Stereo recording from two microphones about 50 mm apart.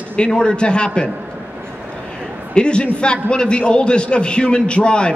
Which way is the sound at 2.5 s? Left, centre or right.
Centre.